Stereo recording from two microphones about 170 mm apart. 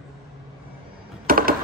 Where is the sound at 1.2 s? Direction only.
60° right (ahead or behind).